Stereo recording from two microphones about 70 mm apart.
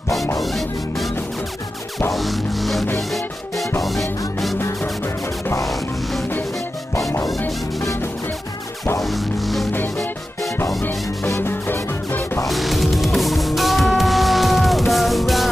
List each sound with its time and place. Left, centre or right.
0.4 s music: centre
2.1 s music: centre
7.3 s music: left
9.0 s music: centre
10.8 s music: left
12.4 s music: centre